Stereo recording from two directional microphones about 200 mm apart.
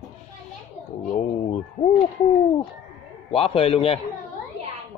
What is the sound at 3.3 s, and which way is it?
Speech, 30° left (ahead or behind).